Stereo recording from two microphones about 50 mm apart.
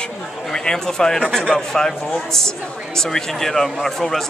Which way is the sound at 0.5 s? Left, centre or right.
Centre.